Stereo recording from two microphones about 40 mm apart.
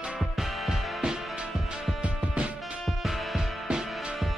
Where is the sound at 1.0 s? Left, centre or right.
Centre.